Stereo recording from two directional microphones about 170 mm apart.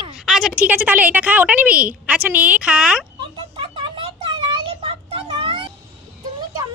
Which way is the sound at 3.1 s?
30° right (ahead or behind).